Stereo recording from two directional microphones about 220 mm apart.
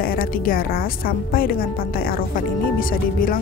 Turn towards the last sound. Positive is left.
turn(degrees=40)  # may be behind; listen again after turning